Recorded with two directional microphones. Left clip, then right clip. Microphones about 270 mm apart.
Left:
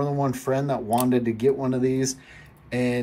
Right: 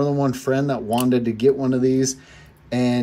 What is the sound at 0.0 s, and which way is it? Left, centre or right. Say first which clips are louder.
Speech: right 4 dB; centre.